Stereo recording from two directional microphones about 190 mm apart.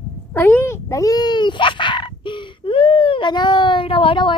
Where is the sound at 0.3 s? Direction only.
10° left (ahead or behind).